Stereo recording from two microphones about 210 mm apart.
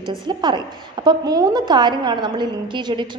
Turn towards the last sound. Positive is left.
turn(degrees=-20)  # may be behind; listen again after turning